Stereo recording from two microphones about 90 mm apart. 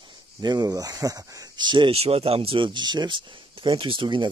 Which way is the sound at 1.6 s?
60° right (ahead or behind).